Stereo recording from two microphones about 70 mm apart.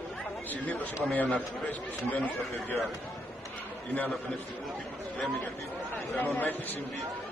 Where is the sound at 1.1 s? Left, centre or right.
Left.